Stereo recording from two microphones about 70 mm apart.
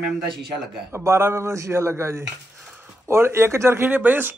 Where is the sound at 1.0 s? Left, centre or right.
Right.